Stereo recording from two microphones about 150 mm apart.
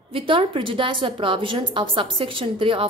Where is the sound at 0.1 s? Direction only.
35° right (ahead or behind).